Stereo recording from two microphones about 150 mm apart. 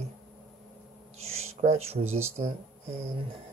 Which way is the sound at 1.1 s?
45° right (ahead or behind).